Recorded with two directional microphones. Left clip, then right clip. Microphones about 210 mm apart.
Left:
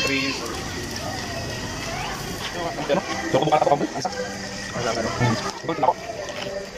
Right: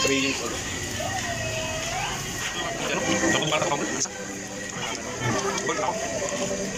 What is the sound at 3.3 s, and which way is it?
Speech, 40° left (ahead or behind).